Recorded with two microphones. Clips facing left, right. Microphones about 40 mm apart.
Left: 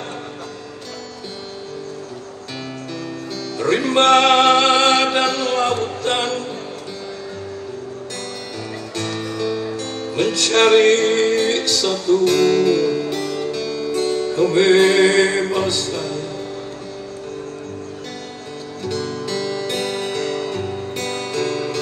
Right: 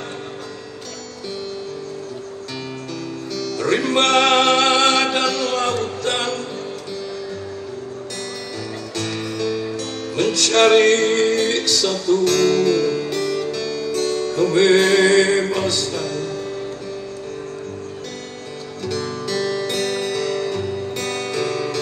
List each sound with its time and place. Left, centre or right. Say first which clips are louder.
3.5 s music: left 2 dB; centre
9.2 s music: even; centre
19.2 s music: right 1 dB; centre